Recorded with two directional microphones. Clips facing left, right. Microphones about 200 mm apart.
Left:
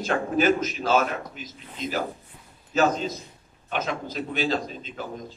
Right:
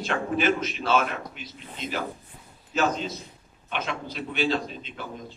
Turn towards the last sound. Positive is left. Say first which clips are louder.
# left 1 dB
turn(degrees=40)  # may be behind; listen again after turning